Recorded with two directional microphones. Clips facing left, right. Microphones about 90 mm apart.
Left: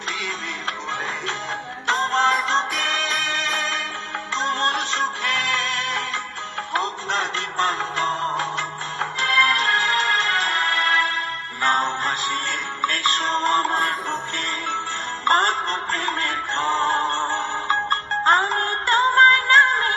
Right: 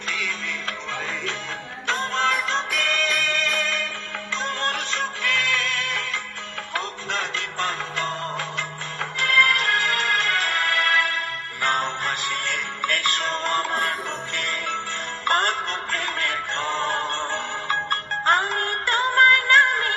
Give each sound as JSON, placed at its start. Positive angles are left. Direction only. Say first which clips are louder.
{"t": 1.9, "sound": "music", "louder": "left 4 dB", "side_deg": 25}